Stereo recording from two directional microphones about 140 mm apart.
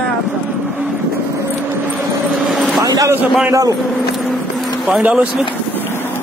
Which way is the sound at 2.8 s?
25° right (ahead or behind).